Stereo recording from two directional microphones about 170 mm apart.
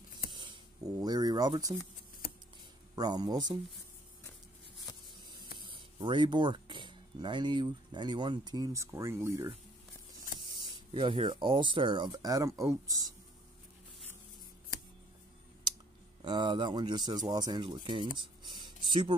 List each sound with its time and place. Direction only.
0.3 s a sound: 30° right (ahead or behind)
3.0 s speech: 25° right (ahead or behind)
5.6 s speech: 30° right (ahead or behind)
10.4 s speech: 30° right (ahead or behind)
16.2 s speech: 25° right (ahead or behind)
18.1 s a sound: 30° right (ahead or behind)